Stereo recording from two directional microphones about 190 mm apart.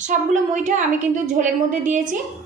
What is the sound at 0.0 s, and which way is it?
A woman's voice, 40° right (ahead or behind).